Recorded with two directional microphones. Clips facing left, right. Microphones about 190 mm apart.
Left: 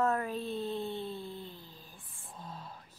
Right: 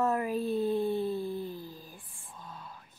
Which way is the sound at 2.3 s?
35° left (ahead or behind).